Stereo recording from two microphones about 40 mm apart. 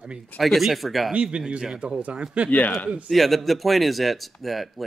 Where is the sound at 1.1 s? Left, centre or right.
Right.